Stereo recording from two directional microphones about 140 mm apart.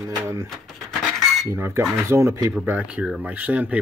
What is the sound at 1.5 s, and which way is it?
Speech, 20° right (ahead or behind).